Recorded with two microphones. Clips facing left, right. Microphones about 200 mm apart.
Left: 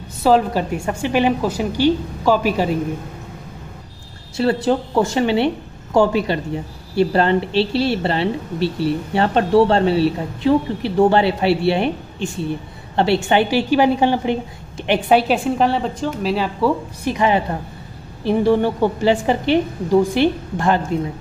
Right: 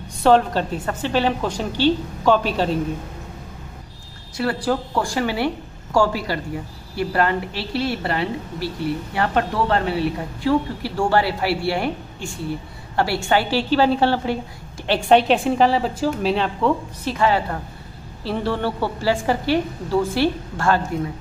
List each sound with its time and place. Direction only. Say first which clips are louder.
0.2 s a woman's voice: left 1 dB; 5° left (ahead or behind)
4.4 s a woman's voice: left 5 dB; 25° left (ahead or behind)
15.0 s a woman's voice: right 1 dB; 5° left (ahead or behind)